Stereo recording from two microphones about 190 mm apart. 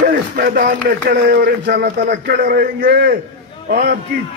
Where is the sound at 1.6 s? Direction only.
55° right (ahead or behind).